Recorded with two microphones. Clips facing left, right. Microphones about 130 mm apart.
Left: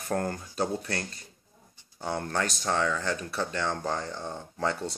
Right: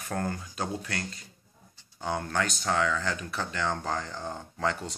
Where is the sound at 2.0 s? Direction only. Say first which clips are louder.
Even; 35° left (ahead or behind).